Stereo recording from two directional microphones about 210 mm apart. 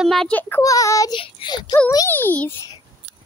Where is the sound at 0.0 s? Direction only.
Centre (ahead or behind).